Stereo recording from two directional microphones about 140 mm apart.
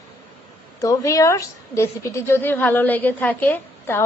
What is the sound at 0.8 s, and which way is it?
A woman's voice, 25° left (ahead or behind).